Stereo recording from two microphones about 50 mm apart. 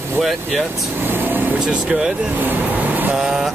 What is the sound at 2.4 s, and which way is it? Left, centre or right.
Vehicle, right.